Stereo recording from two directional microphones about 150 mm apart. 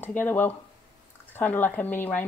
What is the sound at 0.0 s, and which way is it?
Speech, 10° left (ahead or behind).